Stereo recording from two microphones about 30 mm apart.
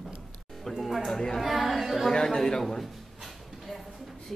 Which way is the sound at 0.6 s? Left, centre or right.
Centre.